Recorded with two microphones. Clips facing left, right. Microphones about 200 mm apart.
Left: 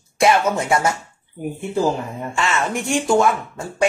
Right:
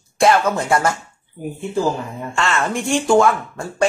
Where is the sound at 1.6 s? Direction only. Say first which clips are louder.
Even; 20° left (ahead or behind).